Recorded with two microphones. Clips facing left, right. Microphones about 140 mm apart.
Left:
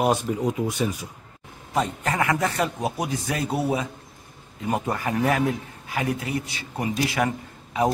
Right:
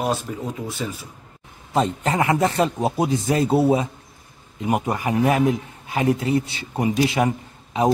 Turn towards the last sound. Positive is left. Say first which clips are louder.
# right 2 dB
turn(degrees=-20)  # may be behind; listen again after turning